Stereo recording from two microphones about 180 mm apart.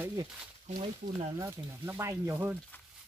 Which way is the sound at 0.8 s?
30° right (ahead or behind).